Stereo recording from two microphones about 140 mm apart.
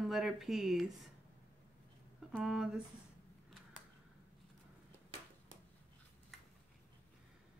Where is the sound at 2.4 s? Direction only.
5° right (ahead or behind).